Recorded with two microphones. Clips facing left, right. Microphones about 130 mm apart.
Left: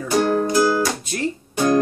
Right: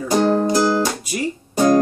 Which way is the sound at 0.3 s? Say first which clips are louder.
Right 1 dB; 30° right (ahead or behind).